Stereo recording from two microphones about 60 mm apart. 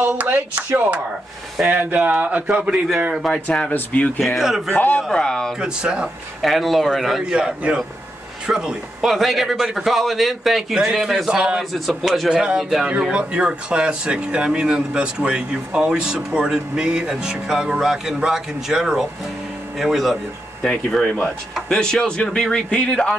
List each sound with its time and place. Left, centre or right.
0.0 s speech: right
3.3 s a man's voice: centre
3.7 s speech: left
4.4 s a man's voice: centre
4.6 s speech: left
5.1 s a man's voice: centre
5.6 s speech: centre
6.4 s a man's voice: centre
7.2 s a man's voice: centre
13.1 s a man's voice: centre
20.6 s a man's voice: centre